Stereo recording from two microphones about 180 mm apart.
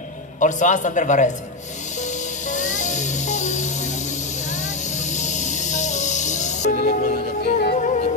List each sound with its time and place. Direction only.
0.4 s speech: 45° left (ahead or behind)
2.5 s music: 45° left (ahead or behind)